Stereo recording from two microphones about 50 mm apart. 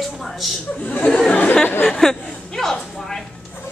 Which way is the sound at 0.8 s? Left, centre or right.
Left.